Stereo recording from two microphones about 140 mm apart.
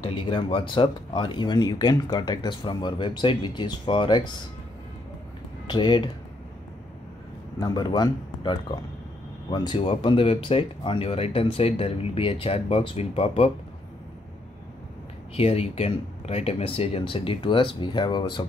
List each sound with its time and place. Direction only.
0.0 s speech: 35° left (ahead or behind)
5.7 s speech: 30° left (ahead or behind)
7.6 s speech: 30° left (ahead or behind)
15.3 s speech: 45° left (ahead or behind)